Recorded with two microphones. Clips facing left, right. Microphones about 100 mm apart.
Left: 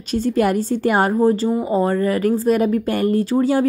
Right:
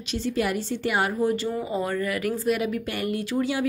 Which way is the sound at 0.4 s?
45° left (ahead or behind).